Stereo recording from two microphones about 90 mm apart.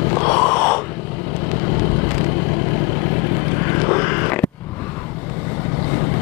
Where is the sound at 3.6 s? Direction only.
20° left (ahead or behind).